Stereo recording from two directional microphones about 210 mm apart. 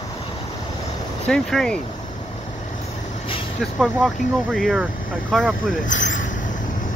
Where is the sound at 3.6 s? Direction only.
Centre (ahead or behind).